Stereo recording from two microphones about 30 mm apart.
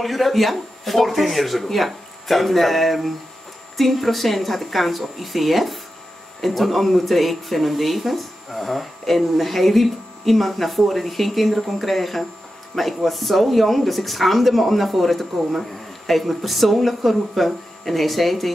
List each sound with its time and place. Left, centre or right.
0.0 s speech: centre